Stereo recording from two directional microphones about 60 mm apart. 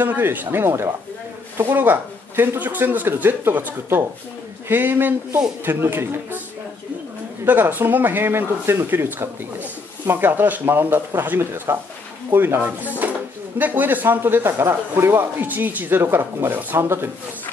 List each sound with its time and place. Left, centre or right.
0.0 s speech: right
7.4 s speech: right
10.1 s speech: right